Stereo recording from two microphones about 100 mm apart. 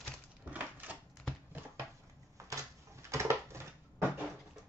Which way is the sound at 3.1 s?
30° right (ahead or behind).